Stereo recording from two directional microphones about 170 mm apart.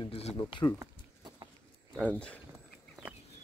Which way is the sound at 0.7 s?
25° right (ahead or behind).